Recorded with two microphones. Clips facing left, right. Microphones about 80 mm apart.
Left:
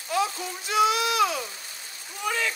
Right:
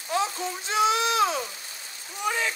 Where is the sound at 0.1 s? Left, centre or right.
Right.